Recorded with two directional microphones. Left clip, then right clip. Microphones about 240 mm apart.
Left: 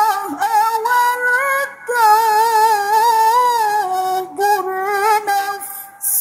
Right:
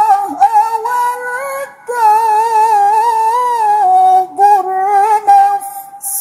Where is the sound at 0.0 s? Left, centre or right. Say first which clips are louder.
Right 7 dB; left.